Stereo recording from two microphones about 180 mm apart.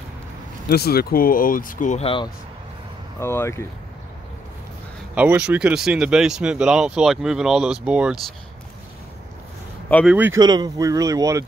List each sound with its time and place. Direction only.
0.7 s speech: 60° left (ahead or behind); by 2.3 s 30° left (ahead or behind)
3.2 s speech: 15° left (ahead or behind)
5.1 s speech: 10° right (ahead or behind)
10.0 s speech: 10° right (ahead or behind)
10.4 s speech: 20° right (ahead or behind)